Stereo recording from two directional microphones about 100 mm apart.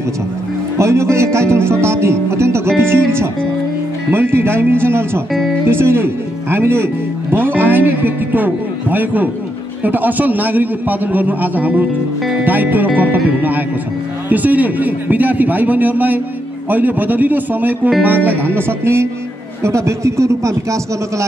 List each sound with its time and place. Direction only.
0.7 s speech: 30° right (ahead or behind)
4.1 s a man's voice: 25° right (ahead or behind)